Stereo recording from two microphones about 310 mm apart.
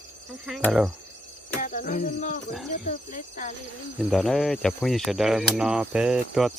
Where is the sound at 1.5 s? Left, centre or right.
Left.